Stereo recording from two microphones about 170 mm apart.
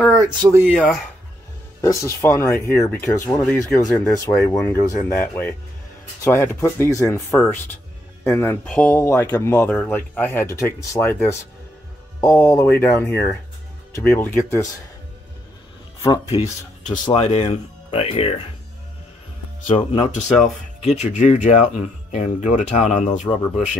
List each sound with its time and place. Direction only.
0.1 s speech: 25° right (ahead or behind)
0.6 s speech: 5° right (ahead or behind)
1.8 s speech: 20° left (ahead or behind)
12.2 s speech: 20° left (ahead or behind)
16.0 s speech: 20° left (ahead or behind)
16.8 s speech: 45° left (ahead or behind)
19.8 s speech: 35° left (ahead or behind)